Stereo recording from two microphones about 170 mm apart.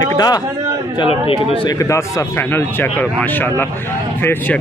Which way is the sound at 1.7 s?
20° left (ahead or behind).